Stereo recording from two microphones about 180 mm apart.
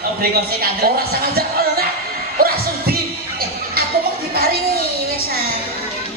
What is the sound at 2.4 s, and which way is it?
Music, 55° right (ahead or behind).